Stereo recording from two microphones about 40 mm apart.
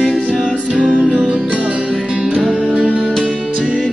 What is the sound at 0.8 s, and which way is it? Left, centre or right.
Music, right.